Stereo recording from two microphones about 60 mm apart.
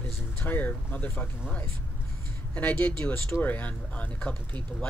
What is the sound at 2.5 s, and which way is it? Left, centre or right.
Speech, left.